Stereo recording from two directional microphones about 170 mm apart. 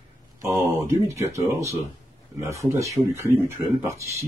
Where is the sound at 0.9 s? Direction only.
15° right (ahead or behind).